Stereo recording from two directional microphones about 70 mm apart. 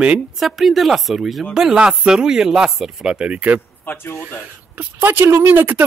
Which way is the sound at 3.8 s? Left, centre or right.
Left.